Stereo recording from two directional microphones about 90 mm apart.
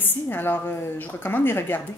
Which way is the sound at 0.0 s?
25° left (ahead or behind).